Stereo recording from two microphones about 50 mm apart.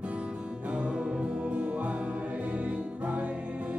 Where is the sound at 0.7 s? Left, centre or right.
Right.